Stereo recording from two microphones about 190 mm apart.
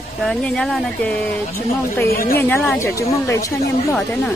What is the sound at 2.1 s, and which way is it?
Speech, 50° left (ahead or behind).